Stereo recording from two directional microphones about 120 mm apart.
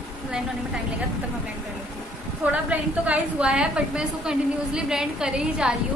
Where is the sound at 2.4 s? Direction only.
10° right (ahead or behind).